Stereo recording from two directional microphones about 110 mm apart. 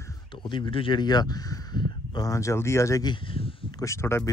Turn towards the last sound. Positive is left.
turn(degrees=25)  # may be behind; listen again after turning